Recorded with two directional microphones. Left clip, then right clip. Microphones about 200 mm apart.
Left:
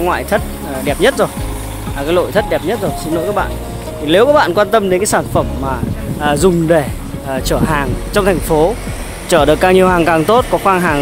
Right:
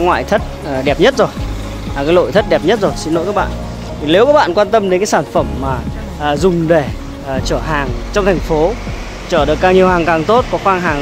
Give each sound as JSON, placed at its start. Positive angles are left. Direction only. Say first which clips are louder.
{"t": 0.0, "sound": "speech", "louder": "right 2 dB", "side_deg": -10}
{"t": 4.0, "sound": "speech", "louder": "even", "side_deg": 0}
{"t": 6.2, "sound": "speech", "louder": "left 1 dB", "side_deg": 10}
{"t": 9.3, "sound": "speech", "louder": "left 1 dB", "side_deg": 20}